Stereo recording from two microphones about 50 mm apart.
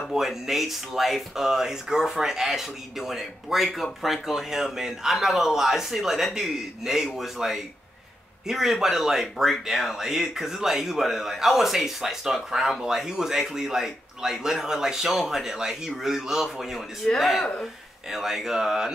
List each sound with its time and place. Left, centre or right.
0.1 s speech: centre
17.0 s speech: centre
18.1 s speech: centre